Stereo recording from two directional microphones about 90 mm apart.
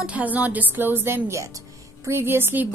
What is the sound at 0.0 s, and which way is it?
A woman's voice, 15° right (ahead or behind).